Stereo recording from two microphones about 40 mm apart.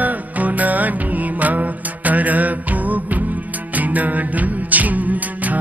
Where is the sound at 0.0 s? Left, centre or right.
Right.